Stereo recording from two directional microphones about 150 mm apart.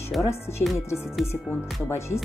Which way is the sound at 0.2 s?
20° left (ahead or behind).